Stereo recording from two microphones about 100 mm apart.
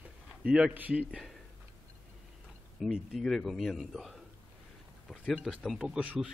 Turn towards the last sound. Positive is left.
turn(degrees=-10)  # may be behind; listen again after turning